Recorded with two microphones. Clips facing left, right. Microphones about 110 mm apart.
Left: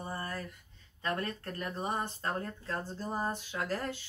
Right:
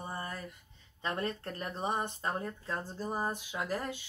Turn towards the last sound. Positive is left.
turn(degrees=-15)  # may be behind; listen again after turning